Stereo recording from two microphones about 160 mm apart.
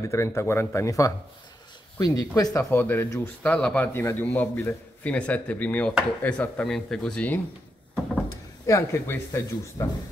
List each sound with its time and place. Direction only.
0.0 s a man's voice: 20° left (ahead or behind)
8.6 s a man's voice: 20° left (ahead or behind)